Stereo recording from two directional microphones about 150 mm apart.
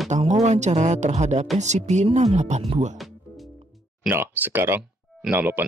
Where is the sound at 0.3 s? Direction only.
50° right (ahead or behind).